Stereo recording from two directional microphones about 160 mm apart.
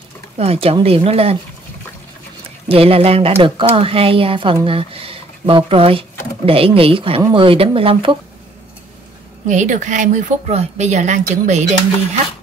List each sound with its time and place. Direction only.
0.4 s a woman's voice: 40° right (ahead or behind)
2.7 s a woman's voice: 35° right (ahead or behind)
9.5 s speech: 50° right (ahead or behind)